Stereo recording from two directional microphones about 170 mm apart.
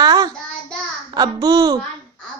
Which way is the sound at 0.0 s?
25° right (ahead or behind).